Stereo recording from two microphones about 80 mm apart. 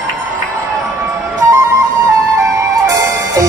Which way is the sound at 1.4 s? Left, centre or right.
Right.